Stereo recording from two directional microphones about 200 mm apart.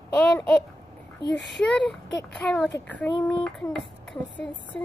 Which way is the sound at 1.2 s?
60° left (ahead or behind).